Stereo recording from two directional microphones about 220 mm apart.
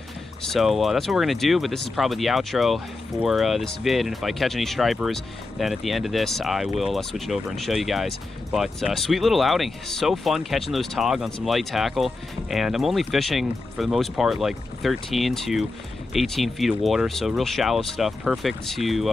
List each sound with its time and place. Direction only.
0.5 s speech: centre (ahead or behind)